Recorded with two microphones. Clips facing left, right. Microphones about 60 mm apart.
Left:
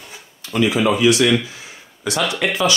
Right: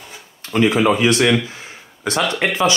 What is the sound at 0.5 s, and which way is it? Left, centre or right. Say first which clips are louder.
Speech: right 2 dB; right.